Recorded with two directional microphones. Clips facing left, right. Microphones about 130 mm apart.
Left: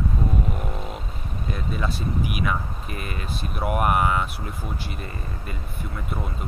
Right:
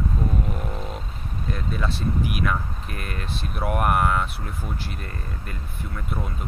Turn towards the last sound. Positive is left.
turn(degrees=0)  # may be behind; listen again after turning